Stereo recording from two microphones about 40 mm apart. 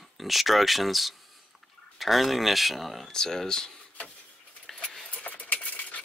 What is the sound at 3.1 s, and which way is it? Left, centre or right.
Speech, centre.